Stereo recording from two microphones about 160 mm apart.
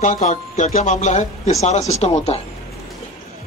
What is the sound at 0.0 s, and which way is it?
Speech, 50° left (ahead or behind).